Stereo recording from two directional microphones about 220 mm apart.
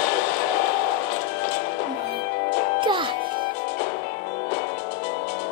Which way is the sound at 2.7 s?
20° right (ahead or behind).